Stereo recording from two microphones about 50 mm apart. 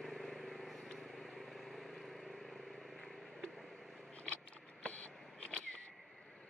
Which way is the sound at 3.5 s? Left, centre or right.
Centre.